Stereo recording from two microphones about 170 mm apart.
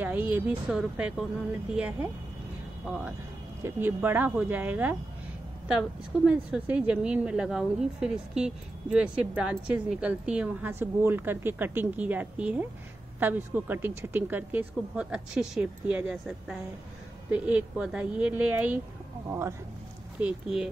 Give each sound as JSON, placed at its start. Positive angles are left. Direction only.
{"t": 0.0, "sound": "a woman's voice", "side_deg": -10}
{"t": 3.6, "sound": "a woman's voice", "side_deg": -10}
{"t": 20.2, "sound": "speech", "side_deg": -5}